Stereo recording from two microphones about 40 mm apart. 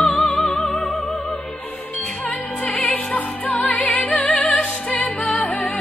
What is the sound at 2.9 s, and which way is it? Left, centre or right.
Music, left.